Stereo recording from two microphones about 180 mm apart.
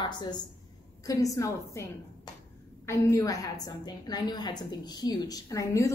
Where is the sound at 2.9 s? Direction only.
15° left (ahead or behind).